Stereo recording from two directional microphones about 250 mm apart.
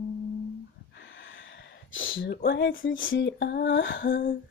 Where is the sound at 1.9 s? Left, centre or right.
Left.